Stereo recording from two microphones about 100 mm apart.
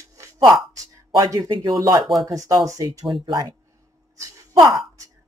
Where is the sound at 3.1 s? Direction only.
50° right (ahead or behind).